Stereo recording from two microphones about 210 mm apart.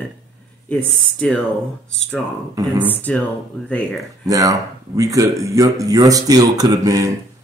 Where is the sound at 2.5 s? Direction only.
15° right (ahead or behind).